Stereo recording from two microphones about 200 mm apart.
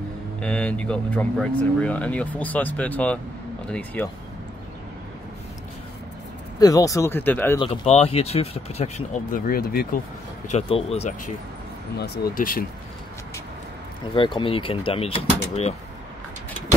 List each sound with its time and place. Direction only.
0.4 s speech: 5° left (ahead or behind)
6.6 s speech: 15° left (ahead or behind)
7.5 s speech: 30° left (ahead or behind); by 9.8 s 45° left (ahead or behind)
10.5 s speech: 30° left (ahead or behind)
12.0 s speech: 45° left (ahead or behind)
14.1 s speech: 25° left (ahead or behind)